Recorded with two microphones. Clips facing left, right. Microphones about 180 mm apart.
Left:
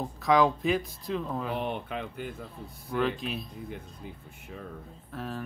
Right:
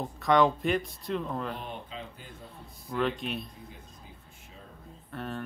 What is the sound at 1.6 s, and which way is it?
Speech, 65° left (ahead or behind).